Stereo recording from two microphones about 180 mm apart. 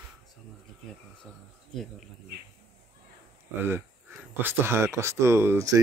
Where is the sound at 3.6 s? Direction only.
10° right (ahead or behind).